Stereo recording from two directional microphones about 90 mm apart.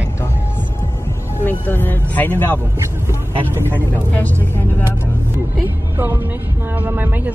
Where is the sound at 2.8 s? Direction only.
30° right (ahead or behind).